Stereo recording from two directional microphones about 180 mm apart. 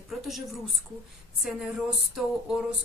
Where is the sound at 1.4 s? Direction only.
Centre (ahead or behind).